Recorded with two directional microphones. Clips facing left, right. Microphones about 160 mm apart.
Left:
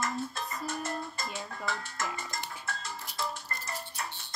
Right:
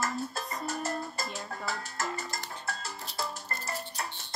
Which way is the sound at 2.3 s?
30° right (ahead or behind).